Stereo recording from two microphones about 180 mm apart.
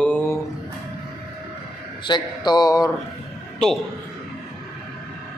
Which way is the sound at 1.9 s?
25° left (ahead or behind).